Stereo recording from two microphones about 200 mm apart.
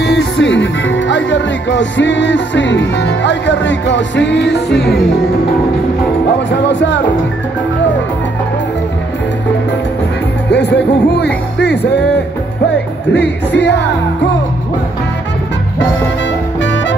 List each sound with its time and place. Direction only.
0.0 s speech: 60° left (ahead or behind)
6.7 s speech: 60° left (ahead or behind)
10.5 s music: 55° left (ahead or behind)
13.1 s speech: 60° left (ahead or behind)
16.6 s music: 65° left (ahead or behind)